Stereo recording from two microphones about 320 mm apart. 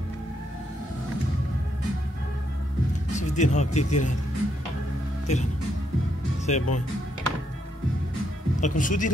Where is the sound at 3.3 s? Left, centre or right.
Left.